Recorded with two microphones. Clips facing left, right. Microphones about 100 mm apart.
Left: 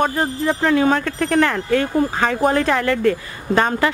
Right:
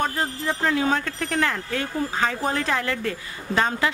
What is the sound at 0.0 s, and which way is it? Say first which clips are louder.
A man's voice: left 6 dB; 60° left (ahead or behind).